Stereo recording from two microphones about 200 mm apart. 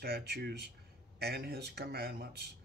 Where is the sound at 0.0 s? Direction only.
50° right (ahead or behind).